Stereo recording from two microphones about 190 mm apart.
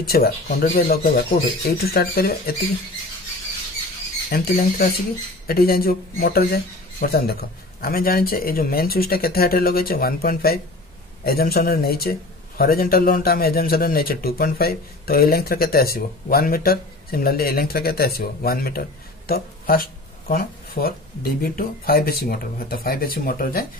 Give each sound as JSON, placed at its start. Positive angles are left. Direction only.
{"t": 0.0, "sound": "a man's voice", "side_deg": 55}
{"t": 4.3, "sound": "a man's voice", "side_deg": 55}